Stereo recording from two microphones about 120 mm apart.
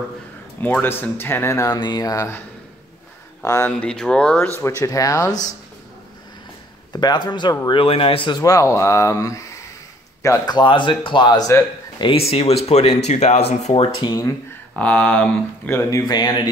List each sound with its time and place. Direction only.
0.6 s speech: 15° left (ahead or behind)
1.8 s speech: 35° left (ahead or behind)
3.6 s speech: 5° left (ahead or behind)
4.6 s speech: 25° left (ahead or behind)
6.9 s speech: 35° left (ahead or behind)
7.8 s speech: 50° left (ahead or behind)
8.4 s speech: 30° left (ahead or behind)
12.0 s speech: 50° left (ahead or behind)
14.8 s speech: 10° left (ahead or behind)
15.8 s speech: 30° left (ahead or behind)